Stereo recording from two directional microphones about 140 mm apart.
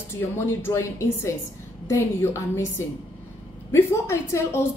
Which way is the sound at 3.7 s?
20° left (ahead or behind).